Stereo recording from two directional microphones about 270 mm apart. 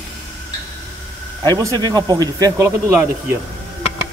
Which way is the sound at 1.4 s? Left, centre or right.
Centre.